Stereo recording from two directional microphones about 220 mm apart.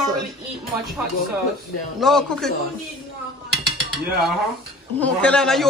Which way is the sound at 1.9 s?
Centre (ahead or behind).